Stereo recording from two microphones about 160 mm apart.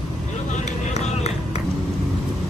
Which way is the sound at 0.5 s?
45° left (ahead or behind).